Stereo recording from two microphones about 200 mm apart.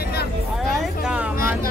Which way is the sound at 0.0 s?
50° left (ahead or behind).